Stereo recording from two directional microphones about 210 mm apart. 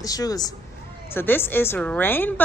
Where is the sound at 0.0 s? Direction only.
15° left (ahead or behind).